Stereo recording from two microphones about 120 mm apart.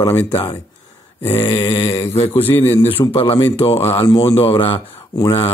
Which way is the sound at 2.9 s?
50° left (ahead or behind).